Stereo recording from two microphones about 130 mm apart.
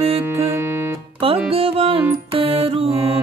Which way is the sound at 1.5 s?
45° right (ahead or behind).